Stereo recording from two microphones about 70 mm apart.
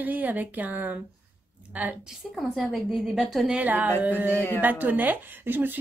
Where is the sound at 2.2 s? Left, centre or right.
Centre.